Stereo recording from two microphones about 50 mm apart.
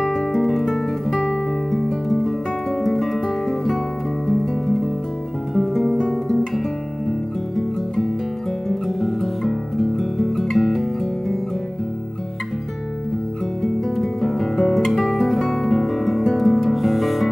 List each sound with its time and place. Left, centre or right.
0.0 s guitar: centre
1.7 s music: centre
5.5 s guitar: centre
7.1 s music: centre
13.6 s guitar: centre